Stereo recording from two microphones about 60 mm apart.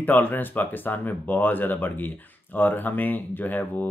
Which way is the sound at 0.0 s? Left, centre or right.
Left.